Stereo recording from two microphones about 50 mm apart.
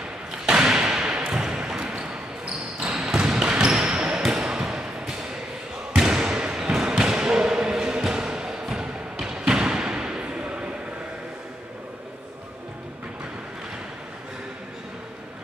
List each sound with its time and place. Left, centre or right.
0.3 s a sound: centre
4.2 s basketball bounce: centre
9.5 s thump: centre